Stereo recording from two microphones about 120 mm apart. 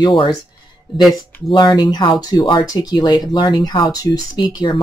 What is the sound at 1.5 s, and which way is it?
Speech, 35° left (ahead or behind).